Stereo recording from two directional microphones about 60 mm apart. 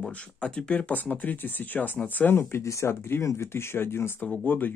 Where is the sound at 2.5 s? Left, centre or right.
Left.